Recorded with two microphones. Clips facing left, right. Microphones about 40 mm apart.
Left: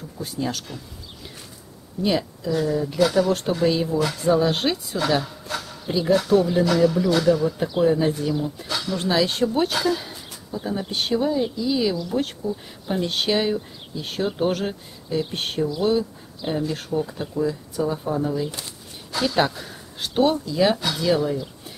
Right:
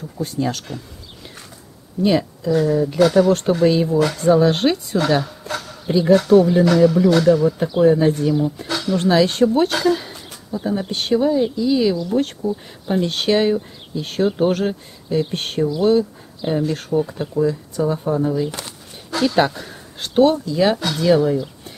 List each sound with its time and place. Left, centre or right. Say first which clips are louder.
0.2 s speech: right 5 dB; centre
2.0 s speech: right 5 dB; centre
18.5 s a sound: right 4 dB; right
19.1 s speech: right 4 dB; centre